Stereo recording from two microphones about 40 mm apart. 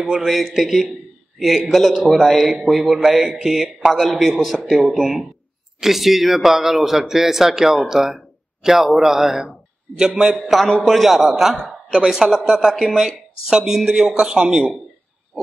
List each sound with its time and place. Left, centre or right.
0.0 s a man's voice: centre
3.9 s a man's voice: centre
10.6 s a man's voice: centre; by 14.7 s right